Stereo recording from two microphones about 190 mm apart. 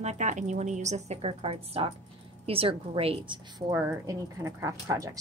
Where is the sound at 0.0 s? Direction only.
35° right (ahead or behind).